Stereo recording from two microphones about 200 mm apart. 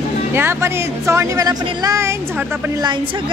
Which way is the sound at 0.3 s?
10° right (ahead or behind).